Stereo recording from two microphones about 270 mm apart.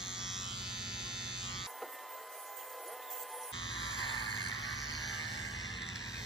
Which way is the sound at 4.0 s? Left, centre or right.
Centre.